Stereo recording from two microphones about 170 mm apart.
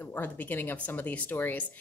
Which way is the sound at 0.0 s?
10° left (ahead or behind).